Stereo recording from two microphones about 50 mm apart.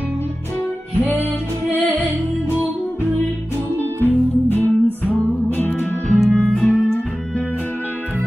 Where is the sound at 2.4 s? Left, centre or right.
Left.